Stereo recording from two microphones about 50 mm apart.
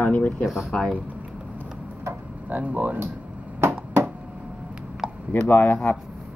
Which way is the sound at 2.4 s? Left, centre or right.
Right.